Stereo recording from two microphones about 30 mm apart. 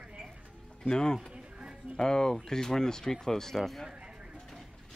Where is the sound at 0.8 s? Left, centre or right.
Left.